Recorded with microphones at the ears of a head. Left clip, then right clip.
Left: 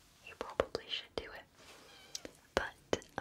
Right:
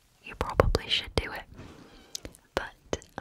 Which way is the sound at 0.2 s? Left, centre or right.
Right.